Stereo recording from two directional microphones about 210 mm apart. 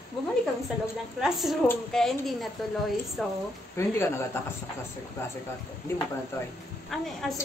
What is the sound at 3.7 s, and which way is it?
Speech, 10° left (ahead or behind).